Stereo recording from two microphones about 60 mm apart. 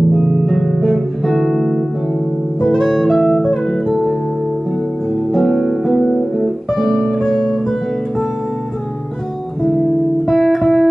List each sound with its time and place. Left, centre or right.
0.1 s music: centre
5.3 s music: centre
10.2 s music: centre